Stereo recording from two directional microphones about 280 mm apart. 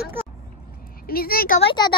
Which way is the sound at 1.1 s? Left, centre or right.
Left.